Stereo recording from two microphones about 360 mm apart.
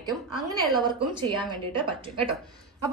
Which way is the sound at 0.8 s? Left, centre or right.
Centre.